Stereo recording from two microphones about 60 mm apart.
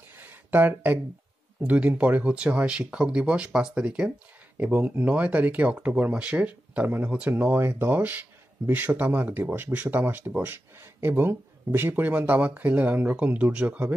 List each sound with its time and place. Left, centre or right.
0.2 s a sound: right
1.6 s speech: right
4.7 s speech: right
7.5 s speech: right
11.9 s speech: right